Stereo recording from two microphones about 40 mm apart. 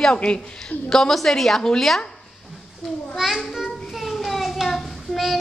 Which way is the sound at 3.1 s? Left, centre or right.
Centre.